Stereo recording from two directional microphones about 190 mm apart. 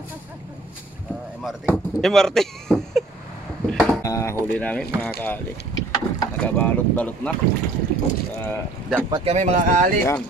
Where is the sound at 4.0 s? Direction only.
15° left (ahead or behind).